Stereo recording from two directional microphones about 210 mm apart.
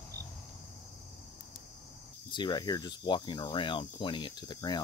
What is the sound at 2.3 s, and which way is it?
Speech, 20° left (ahead or behind).